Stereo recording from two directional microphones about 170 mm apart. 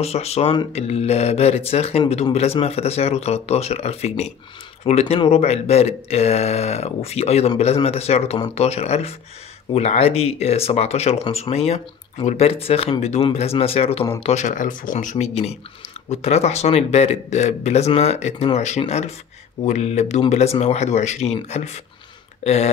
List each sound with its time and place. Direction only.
0.0 s speech: 35° left (ahead or behind)